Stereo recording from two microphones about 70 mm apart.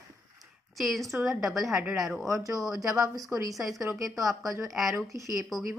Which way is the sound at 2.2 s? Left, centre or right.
Right.